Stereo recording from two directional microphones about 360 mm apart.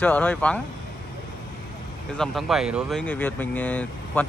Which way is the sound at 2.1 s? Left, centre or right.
Centre.